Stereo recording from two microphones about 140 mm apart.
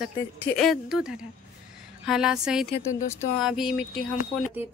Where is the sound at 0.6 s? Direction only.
Centre (ahead or behind).